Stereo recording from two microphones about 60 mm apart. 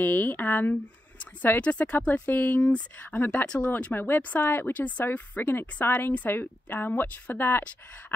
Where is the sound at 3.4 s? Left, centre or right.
Centre.